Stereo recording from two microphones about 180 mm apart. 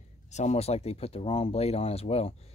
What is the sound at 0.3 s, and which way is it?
Speech, 40° left (ahead or behind).